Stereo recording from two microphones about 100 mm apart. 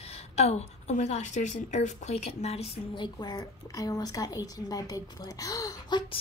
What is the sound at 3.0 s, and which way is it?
A woman's voice, 45° left (ahead or behind).